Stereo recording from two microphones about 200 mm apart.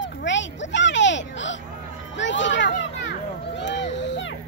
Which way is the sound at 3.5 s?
65° left (ahead or behind).